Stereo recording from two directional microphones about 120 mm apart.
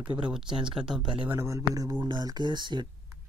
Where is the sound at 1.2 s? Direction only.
20° right (ahead or behind).